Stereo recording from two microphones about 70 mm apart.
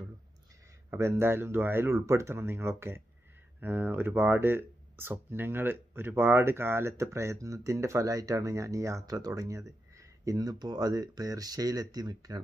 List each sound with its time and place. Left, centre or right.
0.8 s speech: right